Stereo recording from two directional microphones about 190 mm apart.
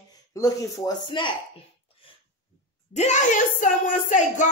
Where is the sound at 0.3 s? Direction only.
15° left (ahead or behind).